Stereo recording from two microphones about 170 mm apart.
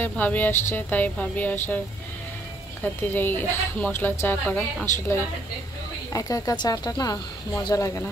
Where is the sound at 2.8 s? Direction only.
10° left (ahead or behind).